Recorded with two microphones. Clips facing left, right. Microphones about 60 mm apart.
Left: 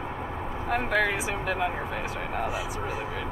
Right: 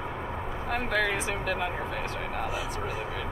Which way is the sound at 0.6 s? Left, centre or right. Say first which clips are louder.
Left 3 dB; centre.